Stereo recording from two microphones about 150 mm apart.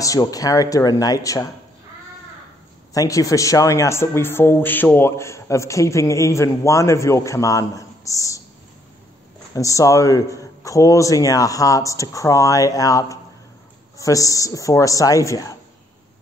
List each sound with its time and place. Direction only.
0.0 s speech: 25° left (ahead or behind)
2.9 s speech: 20° left (ahead or behind)
9.5 s speech: 20° left (ahead or behind)